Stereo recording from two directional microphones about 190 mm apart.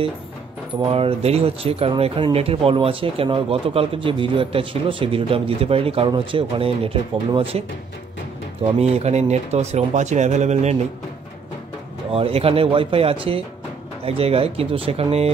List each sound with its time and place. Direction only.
0.7 s speech: 30° right (ahead or behind)
8.7 s speech: 35° right (ahead or behind)
12.1 s speech: 30° right (ahead or behind)